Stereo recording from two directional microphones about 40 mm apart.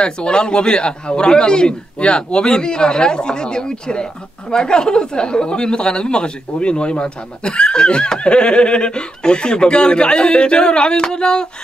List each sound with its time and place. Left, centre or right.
0.0 s speech: left